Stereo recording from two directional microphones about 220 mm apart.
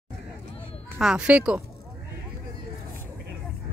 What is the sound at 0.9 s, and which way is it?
Speech, 5° right (ahead or behind).